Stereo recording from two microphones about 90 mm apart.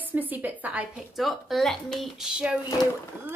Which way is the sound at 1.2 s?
Centre (ahead or behind).